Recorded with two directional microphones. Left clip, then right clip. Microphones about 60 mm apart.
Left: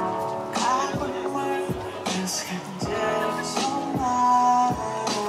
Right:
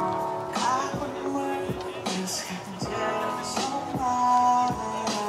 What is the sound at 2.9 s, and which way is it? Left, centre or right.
Music, centre.